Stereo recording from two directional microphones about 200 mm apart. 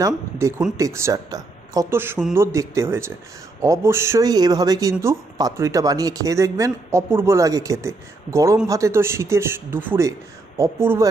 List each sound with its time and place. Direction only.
0.0 s speech: 15° right (ahead or behind)